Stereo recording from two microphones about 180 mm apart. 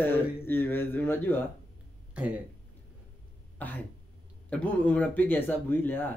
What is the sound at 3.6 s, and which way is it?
A man's voice, 10° left (ahead or behind).